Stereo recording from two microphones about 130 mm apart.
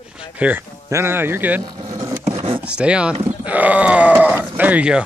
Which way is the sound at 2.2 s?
50° right (ahead or behind).